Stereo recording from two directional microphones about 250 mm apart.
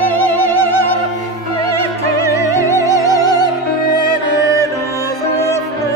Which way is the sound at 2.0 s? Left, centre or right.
Centre.